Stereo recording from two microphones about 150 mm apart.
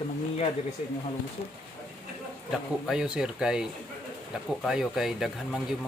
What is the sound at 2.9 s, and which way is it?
Speech, 5° right (ahead or behind).